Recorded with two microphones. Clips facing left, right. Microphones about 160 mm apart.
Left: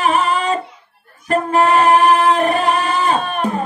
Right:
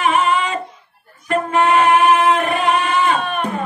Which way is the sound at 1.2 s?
35° left (ahead or behind).